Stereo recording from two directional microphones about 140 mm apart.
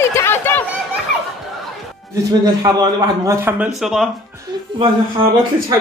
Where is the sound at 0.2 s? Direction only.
15° left (ahead or behind).